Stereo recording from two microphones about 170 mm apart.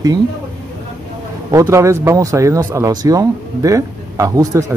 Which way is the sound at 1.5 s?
15° right (ahead or behind).